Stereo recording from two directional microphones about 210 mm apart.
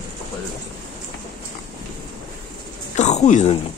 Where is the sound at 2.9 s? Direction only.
35° left (ahead or behind).